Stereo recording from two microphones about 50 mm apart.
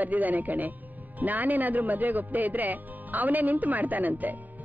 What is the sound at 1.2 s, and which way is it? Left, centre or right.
Speech, right.